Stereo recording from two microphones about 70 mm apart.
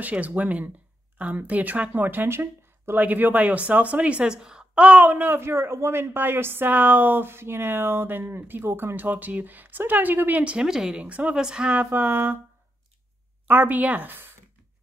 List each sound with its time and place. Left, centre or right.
0.0 s a woman's voice: right
3.0 s a woman's voice: right
10.4 s a woman's voice: centre
13.5 s a woman's voice: right